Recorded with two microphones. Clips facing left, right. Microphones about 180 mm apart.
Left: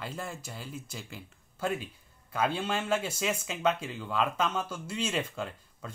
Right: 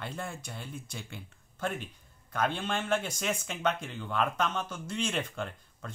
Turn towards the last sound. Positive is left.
turn(degrees=5)  # may be behind; listen again after turning